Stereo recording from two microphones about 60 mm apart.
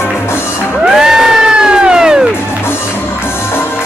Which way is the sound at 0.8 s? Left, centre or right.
Centre.